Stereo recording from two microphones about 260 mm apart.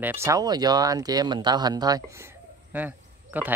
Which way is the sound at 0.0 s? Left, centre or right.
Centre.